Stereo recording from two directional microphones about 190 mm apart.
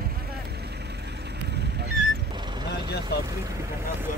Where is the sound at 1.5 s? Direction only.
60° right (ahead or behind).